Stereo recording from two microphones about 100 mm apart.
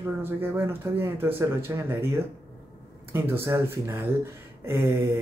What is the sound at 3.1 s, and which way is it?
Speech, 25° right (ahead or behind).